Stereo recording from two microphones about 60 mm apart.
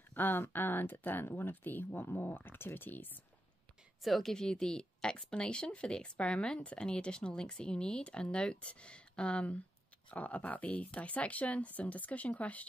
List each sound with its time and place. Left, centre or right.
0.1 s speech: left
4.0 s speech: centre; by 12.6 s left